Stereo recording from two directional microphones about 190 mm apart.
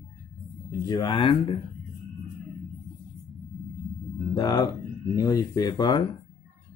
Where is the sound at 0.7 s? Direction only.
25° left (ahead or behind).